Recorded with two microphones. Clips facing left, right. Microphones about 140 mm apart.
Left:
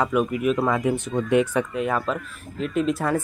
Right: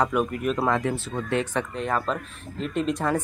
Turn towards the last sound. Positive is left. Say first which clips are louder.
# left 2 dB
turn(degrees=5)  # may be behind; listen again after turning